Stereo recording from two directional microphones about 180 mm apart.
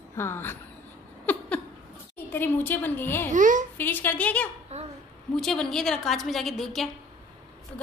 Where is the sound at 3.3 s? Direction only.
45° right (ahead or behind).